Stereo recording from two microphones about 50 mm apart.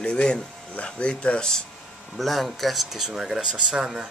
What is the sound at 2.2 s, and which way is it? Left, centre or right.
Speech, centre.